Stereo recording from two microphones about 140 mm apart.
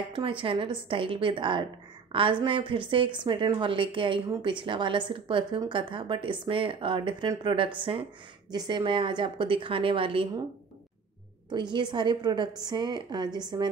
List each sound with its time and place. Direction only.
0.1 s a woman's voice: 40° right (ahead or behind)
11.4 s a woman's voice: 30° right (ahead or behind)